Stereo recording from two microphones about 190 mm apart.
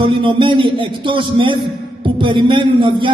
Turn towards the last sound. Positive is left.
turn(degrees=-25)  # may be behind; listen again after turning